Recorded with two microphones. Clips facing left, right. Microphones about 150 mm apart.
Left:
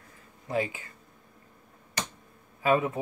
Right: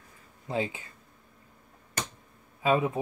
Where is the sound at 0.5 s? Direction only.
25° right (ahead or behind).